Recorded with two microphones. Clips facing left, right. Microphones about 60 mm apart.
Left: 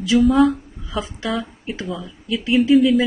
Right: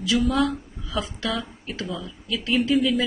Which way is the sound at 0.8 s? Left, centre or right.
Left.